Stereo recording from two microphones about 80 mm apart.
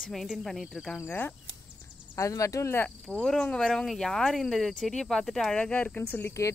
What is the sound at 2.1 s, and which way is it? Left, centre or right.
Speech, left.